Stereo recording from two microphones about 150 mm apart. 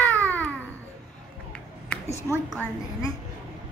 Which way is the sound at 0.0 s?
10° left (ahead or behind).